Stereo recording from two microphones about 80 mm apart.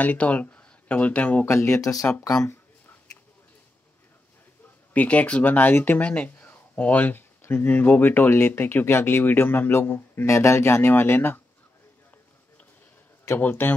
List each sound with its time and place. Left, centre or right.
0.0 s speech: centre
1.4 s speech: left
1.8 s speech: left
2.4 s a sound: left
4.9 s speech: centre
13.4 s speech: left